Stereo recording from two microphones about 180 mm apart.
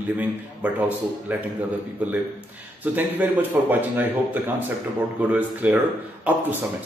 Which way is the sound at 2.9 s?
10° right (ahead or behind).